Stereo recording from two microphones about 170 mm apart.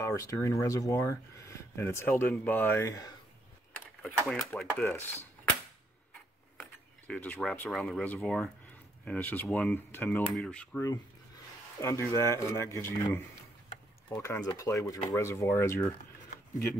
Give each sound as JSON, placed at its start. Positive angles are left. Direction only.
{"t": 0.0, "sound": "speech", "side_deg": 20}
{"t": 3.7, "sound": "speech", "side_deg": 5}
{"t": 6.6, "sound": "speech", "side_deg": 10}
{"t": 14.2, "sound": "speech", "side_deg": 20}